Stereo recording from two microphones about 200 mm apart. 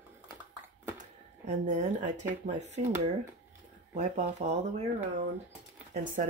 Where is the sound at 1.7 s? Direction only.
35° right (ahead or behind).